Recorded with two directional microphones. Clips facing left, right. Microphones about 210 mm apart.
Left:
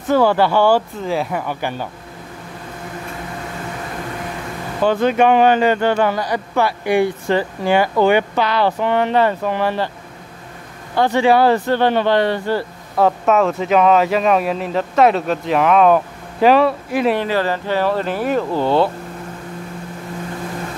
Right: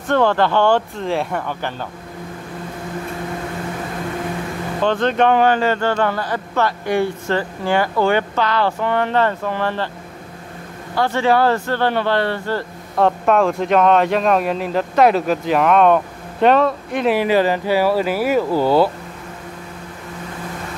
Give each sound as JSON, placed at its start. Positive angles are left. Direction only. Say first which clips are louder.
{"t": 0.1, "sound": "speech", "louder": "left 2 dB", "side_deg": 10}
{"t": 4.8, "sound": "speech", "louder": "left 2 dB", "side_deg": 10}
{"t": 11.0, "sound": "speech", "louder": "left 3 dB", "side_deg": 15}
{"t": 12.9, "sound": "speech", "louder": "left 1 dB", "side_deg": 0}
{"t": 17.2, "sound": "speech", "louder": "right 3 dB", "side_deg": -15}